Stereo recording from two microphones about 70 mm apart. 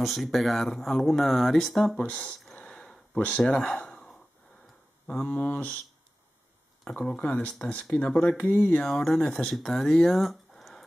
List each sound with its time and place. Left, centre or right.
0.0 s speech: centre
2.0 s speech: centre
2.5 s a sound: centre
5.0 s speech: left
6.8 s speech: centre
8.8 s speech: centre